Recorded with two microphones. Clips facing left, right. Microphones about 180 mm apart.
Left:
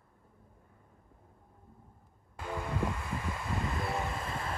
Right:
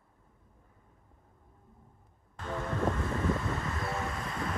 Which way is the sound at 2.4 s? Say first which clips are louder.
Right 3 dB; 10° left (ahead or behind).